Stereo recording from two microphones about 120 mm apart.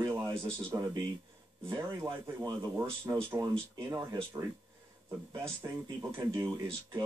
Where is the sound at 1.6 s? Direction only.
20° right (ahead or behind).